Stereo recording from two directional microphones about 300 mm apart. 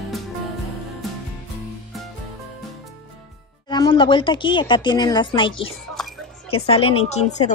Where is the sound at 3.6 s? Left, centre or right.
Centre.